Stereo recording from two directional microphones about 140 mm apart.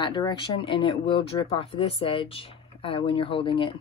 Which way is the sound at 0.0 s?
30° left (ahead or behind).